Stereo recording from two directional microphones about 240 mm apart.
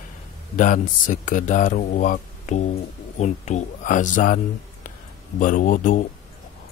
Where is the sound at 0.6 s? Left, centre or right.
Left.